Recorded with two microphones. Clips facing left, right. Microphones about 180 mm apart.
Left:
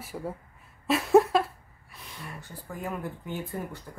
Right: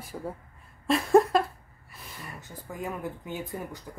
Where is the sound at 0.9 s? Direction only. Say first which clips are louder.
Even; 5° left (ahead or behind).